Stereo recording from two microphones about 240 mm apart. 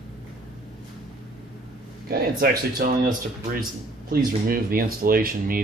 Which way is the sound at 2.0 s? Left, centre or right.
Right.